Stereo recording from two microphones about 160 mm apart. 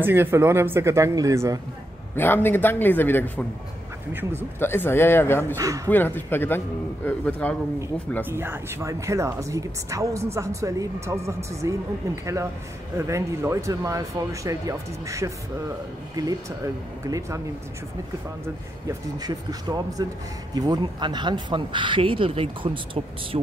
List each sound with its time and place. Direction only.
0.0 s speech: 15° right (ahead or behind)
2.1 s a man's voice: 10° left (ahead or behind)
4.1 s speech: 15° right (ahead or behind)
4.6 s a man's voice: 15° left (ahead or behind)
8.3 s speech: 15° right (ahead or behind)
12.9 s speech: 20° right (ahead or behind)
18.9 s speech: 25° right (ahead or behind)